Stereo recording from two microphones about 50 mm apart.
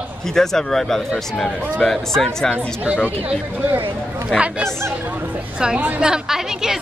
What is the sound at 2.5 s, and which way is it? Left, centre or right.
Speech, right.